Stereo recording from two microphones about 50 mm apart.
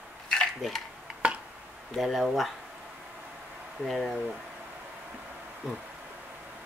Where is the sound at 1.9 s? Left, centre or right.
Centre.